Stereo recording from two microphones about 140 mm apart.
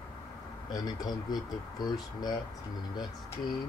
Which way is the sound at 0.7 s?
30° left (ahead or behind).